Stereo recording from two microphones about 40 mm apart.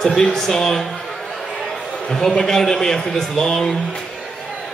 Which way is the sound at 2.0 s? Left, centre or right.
Centre.